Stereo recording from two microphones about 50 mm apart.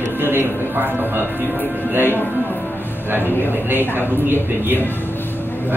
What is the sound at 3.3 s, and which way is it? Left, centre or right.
Speech, right.